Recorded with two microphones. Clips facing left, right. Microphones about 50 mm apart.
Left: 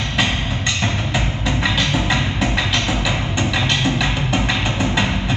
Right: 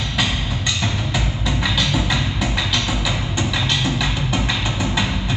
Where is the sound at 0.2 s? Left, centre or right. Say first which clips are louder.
Left 2 dB; left.